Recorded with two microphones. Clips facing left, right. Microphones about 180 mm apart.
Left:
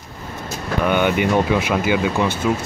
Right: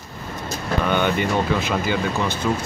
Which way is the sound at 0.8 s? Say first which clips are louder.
Left 4 dB; 10° left (ahead or behind).